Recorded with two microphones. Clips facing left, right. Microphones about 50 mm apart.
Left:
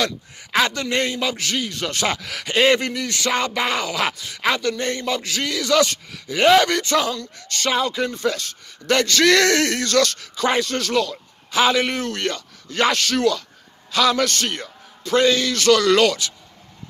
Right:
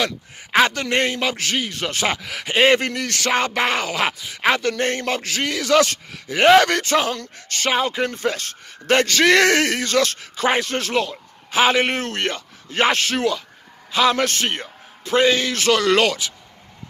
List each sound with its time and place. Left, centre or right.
0.0 s a man's voice: right
2.6 s a man's voice: right
2.9 s a man's voice: right